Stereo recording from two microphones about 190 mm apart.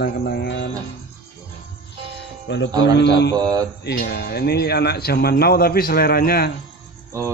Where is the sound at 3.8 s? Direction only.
60° left (ahead or behind).